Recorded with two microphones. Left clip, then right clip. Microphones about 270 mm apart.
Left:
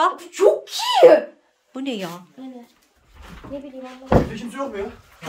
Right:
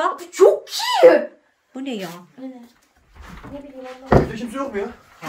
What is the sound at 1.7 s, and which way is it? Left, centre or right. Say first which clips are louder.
Speech: left 1 dB; centre.